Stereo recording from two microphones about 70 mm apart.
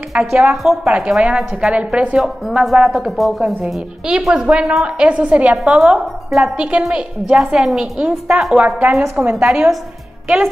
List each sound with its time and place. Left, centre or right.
0.1 s a woman's voice: centre
9.3 s speech: centre
10.2 s a woman's voice: centre